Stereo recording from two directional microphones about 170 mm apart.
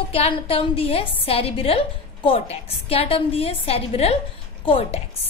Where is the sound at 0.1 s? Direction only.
35° left (ahead or behind).